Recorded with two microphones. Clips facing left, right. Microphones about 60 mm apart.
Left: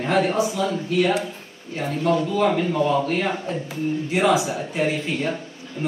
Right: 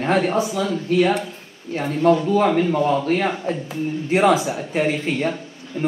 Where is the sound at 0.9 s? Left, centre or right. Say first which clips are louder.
Right 4 dB; right.